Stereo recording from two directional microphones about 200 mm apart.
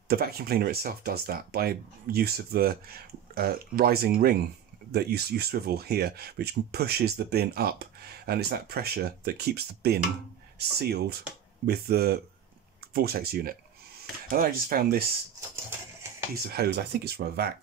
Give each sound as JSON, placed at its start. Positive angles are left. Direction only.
{"t": 0.1, "sound": "speech", "side_deg": -50}
{"t": 16.4, "sound": "speech", "side_deg": -50}